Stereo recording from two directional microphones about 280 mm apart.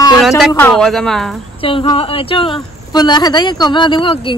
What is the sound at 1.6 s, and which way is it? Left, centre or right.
A woman's voice, centre.